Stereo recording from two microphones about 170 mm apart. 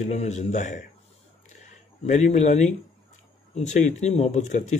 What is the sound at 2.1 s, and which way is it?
Speech, 45° left (ahead or behind).